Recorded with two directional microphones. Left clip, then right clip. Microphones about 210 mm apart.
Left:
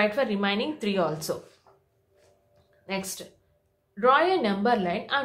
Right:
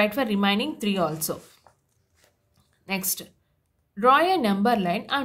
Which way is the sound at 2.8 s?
45° right (ahead or behind).